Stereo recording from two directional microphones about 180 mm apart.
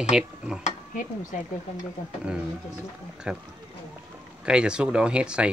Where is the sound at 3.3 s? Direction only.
5° right (ahead or behind).